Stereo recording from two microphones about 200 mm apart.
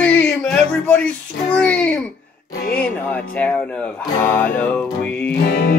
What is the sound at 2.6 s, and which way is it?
Speech, 45° left (ahead or behind).